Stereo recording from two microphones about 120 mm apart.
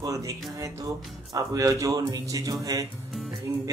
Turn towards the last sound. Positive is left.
turn(degrees=-25)  # may be behind; listen again after turning